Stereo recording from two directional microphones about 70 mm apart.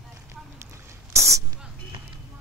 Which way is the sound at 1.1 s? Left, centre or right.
Right.